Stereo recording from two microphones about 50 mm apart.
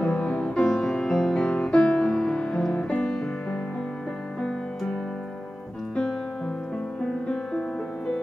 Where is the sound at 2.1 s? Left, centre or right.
Centre.